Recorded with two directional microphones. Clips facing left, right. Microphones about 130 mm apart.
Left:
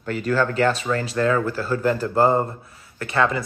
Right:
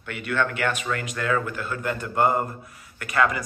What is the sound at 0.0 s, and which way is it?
Speech, 35° left (ahead or behind).